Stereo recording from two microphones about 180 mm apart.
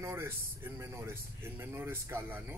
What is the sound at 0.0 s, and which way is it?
Speech, 15° right (ahead or behind).